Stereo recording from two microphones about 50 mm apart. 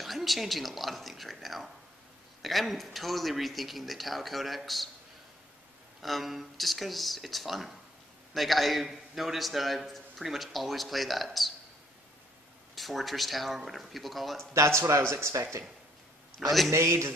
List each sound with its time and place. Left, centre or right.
0.0 s a man's voice: centre
6.0 s a man's voice: centre
12.7 s a man's voice: centre
14.5 s speech: right
16.3 s a man's voice: centre
16.7 s speech: right